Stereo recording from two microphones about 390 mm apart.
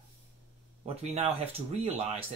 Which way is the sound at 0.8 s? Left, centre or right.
Centre.